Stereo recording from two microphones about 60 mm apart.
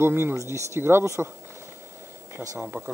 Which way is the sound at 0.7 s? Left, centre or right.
Right.